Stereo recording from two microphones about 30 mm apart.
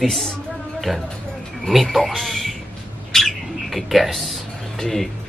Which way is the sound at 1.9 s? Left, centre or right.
Centre.